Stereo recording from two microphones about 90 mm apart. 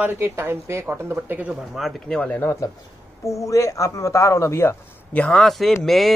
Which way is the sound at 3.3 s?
35° left (ahead or behind).